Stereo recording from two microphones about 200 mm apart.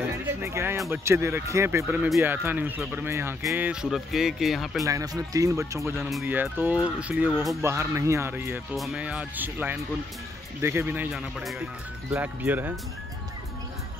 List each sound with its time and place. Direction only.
0.4 s speech: 15° right (ahead or behind)
4.8 s speech: 15° right (ahead or behind)
5.9 s speech: centre (ahead or behind)